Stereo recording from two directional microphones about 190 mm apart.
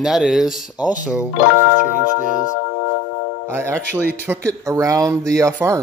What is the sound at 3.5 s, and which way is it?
Speech, 10° right (ahead or behind).